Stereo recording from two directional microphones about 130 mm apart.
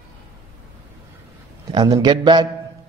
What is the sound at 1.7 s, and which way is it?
Speech, 35° right (ahead or behind).